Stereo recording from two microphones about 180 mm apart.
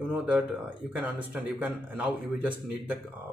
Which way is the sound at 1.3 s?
10° right (ahead or behind).